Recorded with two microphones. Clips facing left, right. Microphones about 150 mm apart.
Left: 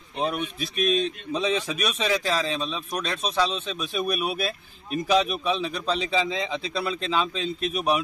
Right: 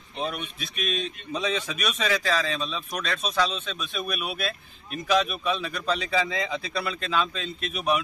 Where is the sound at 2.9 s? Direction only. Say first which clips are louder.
Left 1 dB; 30° left (ahead or behind).